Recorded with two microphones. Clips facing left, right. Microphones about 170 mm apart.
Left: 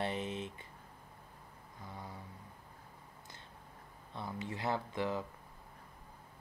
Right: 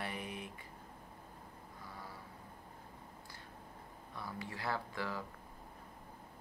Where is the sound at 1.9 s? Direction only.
20° left (ahead or behind).